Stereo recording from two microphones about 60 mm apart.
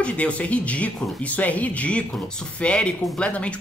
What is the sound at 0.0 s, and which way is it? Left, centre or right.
Speech, left.